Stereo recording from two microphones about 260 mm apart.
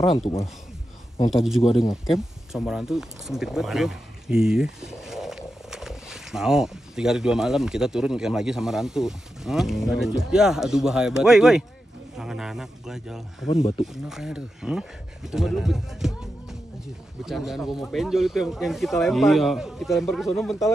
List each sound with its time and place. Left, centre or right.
1.3 s speech: centre
1.6 s speech: left
2.0 s speech: centre
13.5 s speech: left
13.9 s speech: centre